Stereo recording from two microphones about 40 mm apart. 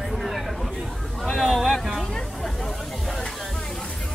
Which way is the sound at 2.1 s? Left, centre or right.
Centre.